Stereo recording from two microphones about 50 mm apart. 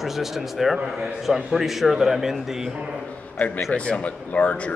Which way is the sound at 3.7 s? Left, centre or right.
Left.